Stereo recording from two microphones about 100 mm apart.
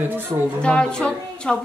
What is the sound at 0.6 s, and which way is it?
Speech, 10° left (ahead or behind).